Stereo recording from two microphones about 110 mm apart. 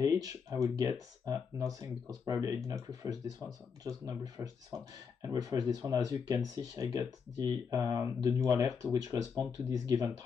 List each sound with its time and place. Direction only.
0.0 s speech: 30° right (ahead or behind)